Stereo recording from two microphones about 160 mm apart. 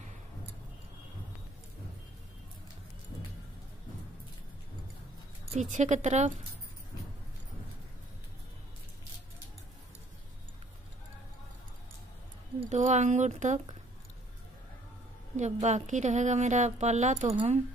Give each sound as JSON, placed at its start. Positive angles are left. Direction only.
{"t": 5.6, "sound": "a woman's voice", "side_deg": -50}
{"t": 12.5, "sound": "a woman's voice", "side_deg": -45}
{"t": 15.3, "sound": "a woman's voice", "side_deg": -45}